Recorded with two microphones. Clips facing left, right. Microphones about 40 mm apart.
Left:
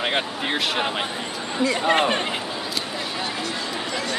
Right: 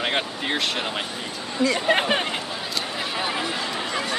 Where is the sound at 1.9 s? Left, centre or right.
Centre.